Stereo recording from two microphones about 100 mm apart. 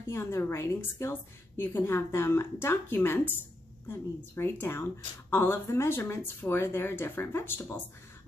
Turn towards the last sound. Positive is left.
turn(degrees=20)  # may be behind; listen again after turning